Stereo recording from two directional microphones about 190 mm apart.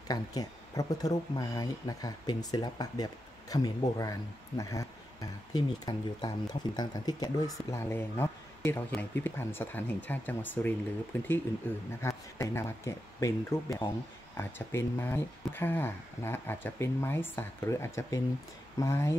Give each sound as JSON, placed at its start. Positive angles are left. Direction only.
{"t": 0.1, "sound": "speech", "side_deg": 20}